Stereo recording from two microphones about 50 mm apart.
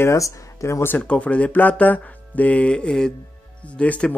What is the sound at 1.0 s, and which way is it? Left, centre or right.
Speech, left.